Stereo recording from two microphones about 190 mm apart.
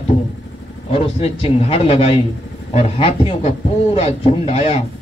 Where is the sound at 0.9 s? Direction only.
30° left (ahead or behind).